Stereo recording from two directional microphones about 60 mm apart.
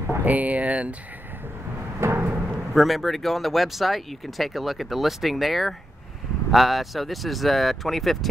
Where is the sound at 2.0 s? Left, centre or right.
Right.